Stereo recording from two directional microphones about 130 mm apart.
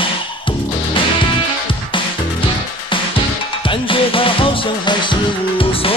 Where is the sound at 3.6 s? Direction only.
40° left (ahead or behind).